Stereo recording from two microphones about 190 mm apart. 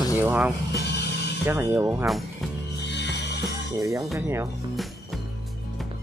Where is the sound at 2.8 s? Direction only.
65° left (ahead or behind).